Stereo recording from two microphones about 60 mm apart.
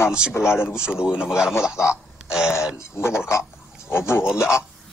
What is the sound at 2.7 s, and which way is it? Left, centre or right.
Speech, left.